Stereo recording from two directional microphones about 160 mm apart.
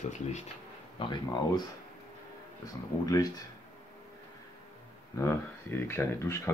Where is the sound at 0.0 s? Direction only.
45° left (ahead or behind).